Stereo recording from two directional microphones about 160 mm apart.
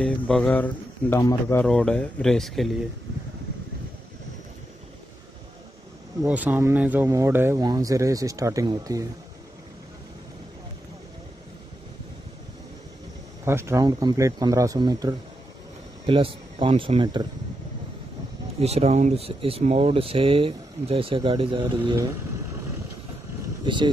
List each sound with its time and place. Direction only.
0.0 s speech: 5° left (ahead or behind)
6.2 s speech: 10° right (ahead or behind)
13.5 s speech: 15° right (ahead or behind)
18.6 s speech: 40° right (ahead or behind)
23.6 s speech: 30° right (ahead or behind)